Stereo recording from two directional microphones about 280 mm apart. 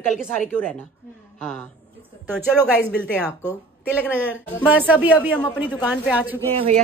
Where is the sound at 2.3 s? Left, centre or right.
Centre.